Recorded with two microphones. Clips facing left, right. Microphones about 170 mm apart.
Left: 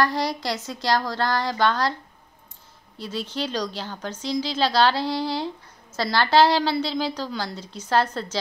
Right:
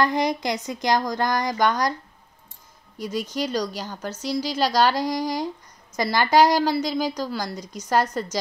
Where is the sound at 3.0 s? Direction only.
10° right (ahead or behind).